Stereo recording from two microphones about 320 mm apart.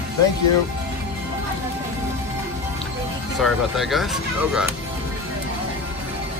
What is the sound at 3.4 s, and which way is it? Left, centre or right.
Speech, centre.